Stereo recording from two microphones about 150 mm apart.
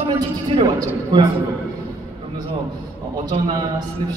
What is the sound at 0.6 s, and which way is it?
Speech, 25° right (ahead or behind).